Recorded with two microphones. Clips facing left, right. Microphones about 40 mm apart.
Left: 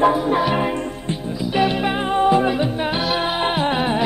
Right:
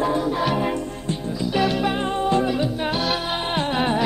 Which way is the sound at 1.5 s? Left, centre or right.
Left.